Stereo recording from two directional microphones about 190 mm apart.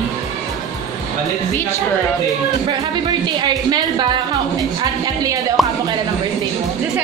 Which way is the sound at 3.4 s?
20° right (ahead or behind).